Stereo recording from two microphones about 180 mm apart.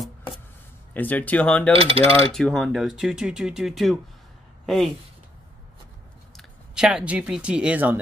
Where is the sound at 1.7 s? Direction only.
30° right (ahead or behind).